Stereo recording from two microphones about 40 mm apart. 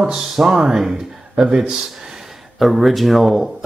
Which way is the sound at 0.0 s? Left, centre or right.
Centre.